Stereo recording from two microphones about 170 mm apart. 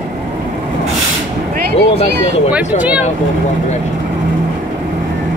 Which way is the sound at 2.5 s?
10° right (ahead or behind).